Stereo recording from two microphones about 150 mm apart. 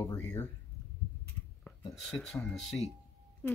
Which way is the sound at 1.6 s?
5° left (ahead or behind).